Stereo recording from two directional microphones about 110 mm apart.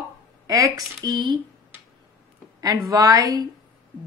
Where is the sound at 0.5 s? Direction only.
30° right (ahead or behind).